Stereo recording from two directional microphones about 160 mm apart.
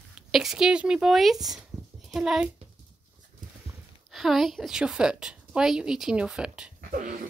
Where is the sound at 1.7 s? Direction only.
20° right (ahead or behind).